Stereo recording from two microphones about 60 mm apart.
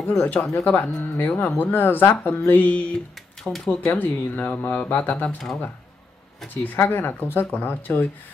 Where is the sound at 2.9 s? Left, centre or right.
Centre.